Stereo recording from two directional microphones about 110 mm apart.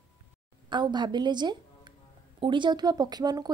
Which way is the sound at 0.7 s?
45° right (ahead or behind).